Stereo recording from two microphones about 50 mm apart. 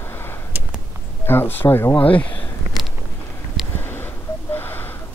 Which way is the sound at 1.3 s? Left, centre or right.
Left.